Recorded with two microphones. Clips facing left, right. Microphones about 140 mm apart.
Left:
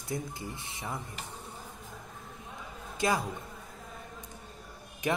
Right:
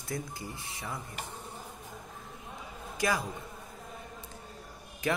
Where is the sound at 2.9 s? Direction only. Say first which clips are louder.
Left 1 dB; 25° left (ahead or behind).